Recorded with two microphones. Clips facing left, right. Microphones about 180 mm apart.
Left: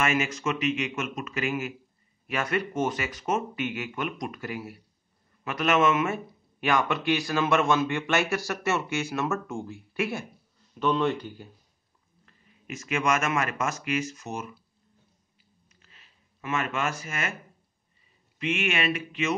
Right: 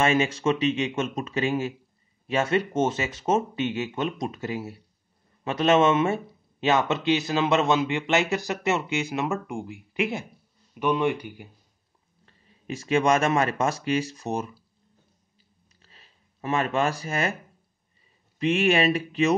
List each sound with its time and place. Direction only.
0.0 s a man's voice: 30° right (ahead or behind); by 11.4 s 15° right (ahead or behind)
12.3 s speech: 30° right (ahead or behind)
15.8 s a sound: 35° right (ahead or behind)
18.4 s speech: 35° right (ahead or behind)